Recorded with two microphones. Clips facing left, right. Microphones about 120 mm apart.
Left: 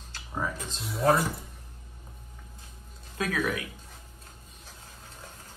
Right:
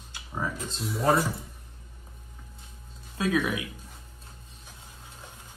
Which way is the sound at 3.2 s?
20° right (ahead or behind).